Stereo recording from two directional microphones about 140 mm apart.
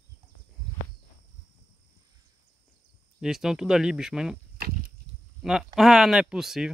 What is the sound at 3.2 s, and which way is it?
Speech, 5° right (ahead or behind).